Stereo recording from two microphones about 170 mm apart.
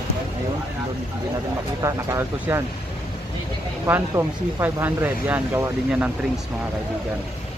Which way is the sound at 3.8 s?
15° right (ahead or behind).